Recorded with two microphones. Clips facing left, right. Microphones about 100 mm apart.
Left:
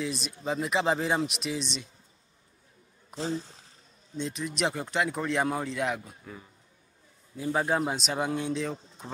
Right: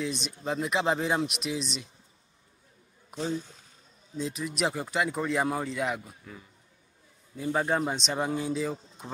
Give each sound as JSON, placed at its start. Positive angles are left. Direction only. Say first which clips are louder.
{"t": 0.0, "sound": "speech", "louder": "even", "side_deg": 0}
{"t": 3.2, "sound": "speech", "louder": "even", "side_deg": 35}
{"t": 4.2, "sound": "speech", "louder": "even", "side_deg": 0}
{"t": 7.3, "sound": "speech", "louder": "even", "side_deg": 5}